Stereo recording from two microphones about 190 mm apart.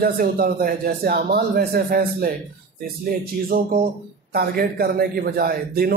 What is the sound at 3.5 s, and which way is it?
Speech, 50° right (ahead or behind).